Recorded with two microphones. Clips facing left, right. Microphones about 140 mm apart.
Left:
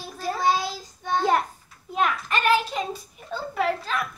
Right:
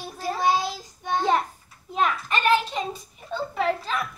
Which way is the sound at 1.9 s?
Centre (ahead or behind).